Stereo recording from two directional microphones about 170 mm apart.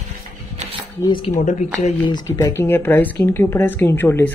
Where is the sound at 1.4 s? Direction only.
45° left (ahead or behind).